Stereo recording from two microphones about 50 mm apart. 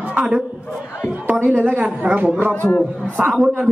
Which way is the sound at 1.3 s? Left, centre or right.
Right.